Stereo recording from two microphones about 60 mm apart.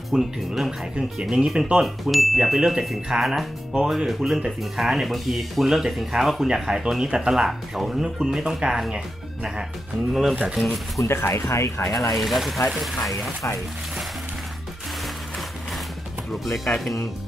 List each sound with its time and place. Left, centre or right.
0.1 s speech: centre
4.5 s speech: centre
10.6 s speech: centre
11.1 s speech: left
12.2 s speech: centre
16.4 s speech: centre